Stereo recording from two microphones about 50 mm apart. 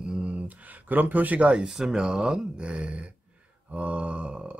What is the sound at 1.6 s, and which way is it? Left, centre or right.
Speech, centre.